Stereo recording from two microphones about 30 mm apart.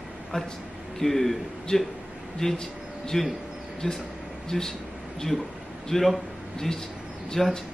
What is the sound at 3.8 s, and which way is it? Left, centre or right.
Speech, left.